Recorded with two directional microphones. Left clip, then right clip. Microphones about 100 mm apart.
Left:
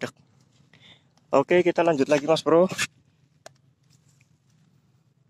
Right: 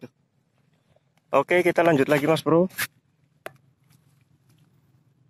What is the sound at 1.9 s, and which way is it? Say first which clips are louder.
Speech: right 1 dB; centre (ahead or behind).